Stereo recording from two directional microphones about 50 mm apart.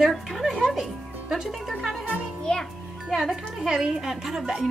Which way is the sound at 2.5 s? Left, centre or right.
Centre.